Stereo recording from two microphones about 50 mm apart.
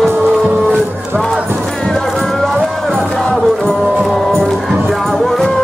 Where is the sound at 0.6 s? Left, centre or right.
Centre.